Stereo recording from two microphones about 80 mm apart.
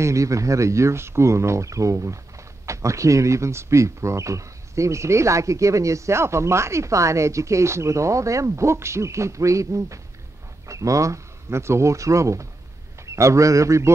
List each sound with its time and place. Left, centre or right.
0.0 s a man's voice: right